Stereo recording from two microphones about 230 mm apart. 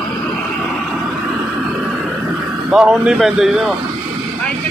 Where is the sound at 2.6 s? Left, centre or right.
Centre.